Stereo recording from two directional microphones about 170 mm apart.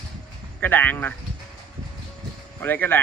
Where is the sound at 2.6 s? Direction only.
10° left (ahead or behind).